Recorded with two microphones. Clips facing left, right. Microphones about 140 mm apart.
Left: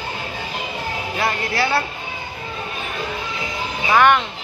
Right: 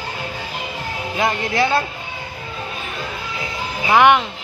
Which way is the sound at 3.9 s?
10° right (ahead or behind).